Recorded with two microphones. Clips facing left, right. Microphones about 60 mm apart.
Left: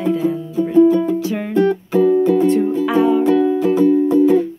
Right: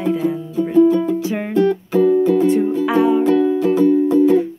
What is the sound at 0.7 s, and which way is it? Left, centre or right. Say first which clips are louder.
Music: left 1 dB; centre.